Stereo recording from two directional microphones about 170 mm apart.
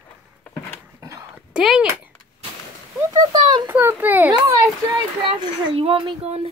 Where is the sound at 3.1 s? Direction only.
25° right (ahead or behind).